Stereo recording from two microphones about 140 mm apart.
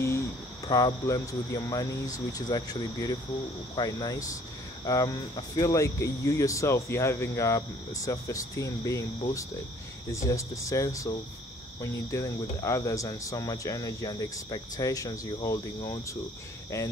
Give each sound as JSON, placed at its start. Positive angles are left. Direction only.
{"t": 0.7, "sound": "speech", "side_deg": 25}
{"t": 10.1, "sound": "speech", "side_deg": 20}